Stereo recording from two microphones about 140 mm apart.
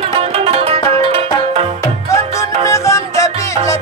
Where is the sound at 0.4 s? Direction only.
45° right (ahead or behind).